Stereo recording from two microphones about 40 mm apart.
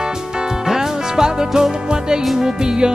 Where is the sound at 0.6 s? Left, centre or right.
Centre.